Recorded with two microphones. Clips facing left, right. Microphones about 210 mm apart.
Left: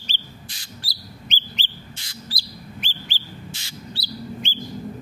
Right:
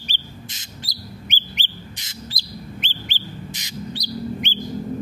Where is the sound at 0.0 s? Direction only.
20° right (ahead or behind).